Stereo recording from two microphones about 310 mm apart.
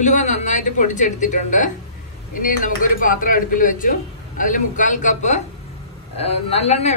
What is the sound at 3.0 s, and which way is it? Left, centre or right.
A man's voice, left.